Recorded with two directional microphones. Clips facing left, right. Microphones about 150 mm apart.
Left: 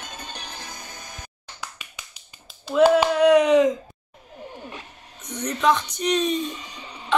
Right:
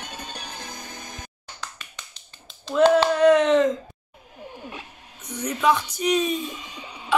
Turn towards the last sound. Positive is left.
turn(degrees=-5)  # may be behind; listen again after turning